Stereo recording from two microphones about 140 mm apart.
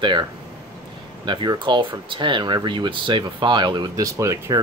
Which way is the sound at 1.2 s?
30° right (ahead or behind).